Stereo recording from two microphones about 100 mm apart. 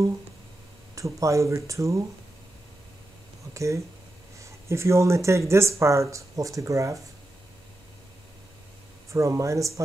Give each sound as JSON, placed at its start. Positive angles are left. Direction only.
{"t": 0.9, "sound": "speech", "side_deg": -30}
{"t": 3.5, "sound": "speech", "side_deg": -30}
{"t": 9.1, "sound": "speech", "side_deg": -30}